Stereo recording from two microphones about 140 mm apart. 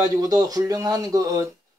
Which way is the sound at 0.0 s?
25° right (ahead or behind).